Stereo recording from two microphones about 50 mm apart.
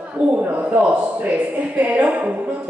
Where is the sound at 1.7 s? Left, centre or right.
Right.